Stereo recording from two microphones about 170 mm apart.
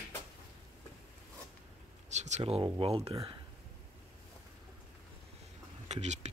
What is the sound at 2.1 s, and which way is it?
Speech, 45° right (ahead or behind).